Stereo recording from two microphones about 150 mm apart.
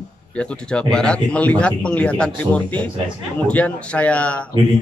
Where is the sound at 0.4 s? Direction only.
5° left (ahead or behind).